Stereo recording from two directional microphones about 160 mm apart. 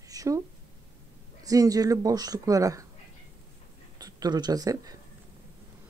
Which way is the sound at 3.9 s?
25° right (ahead or behind).